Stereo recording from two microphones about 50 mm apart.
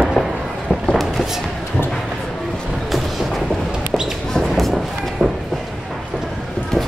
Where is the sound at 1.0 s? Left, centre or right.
Centre.